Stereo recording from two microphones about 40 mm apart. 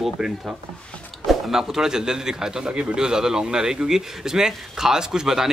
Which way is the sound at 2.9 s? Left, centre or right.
Centre.